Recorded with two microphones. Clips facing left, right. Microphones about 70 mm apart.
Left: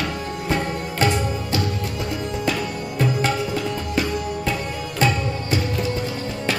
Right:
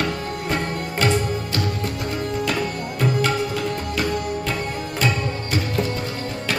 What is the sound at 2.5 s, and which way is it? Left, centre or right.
Sitar, right.